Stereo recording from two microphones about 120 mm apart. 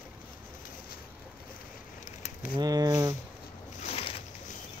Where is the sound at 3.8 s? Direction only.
60° left (ahead or behind).